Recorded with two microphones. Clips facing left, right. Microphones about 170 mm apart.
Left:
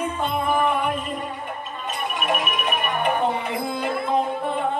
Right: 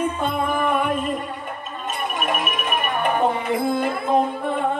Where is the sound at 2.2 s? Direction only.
50° right (ahead or behind).